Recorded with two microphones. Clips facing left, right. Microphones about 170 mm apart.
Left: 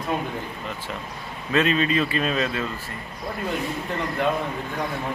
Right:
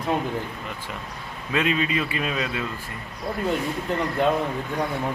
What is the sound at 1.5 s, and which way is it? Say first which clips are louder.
A man's voice: left 3 dB; 10° right (ahead or behind).